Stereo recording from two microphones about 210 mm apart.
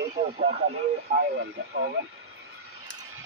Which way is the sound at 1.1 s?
50° right (ahead or behind).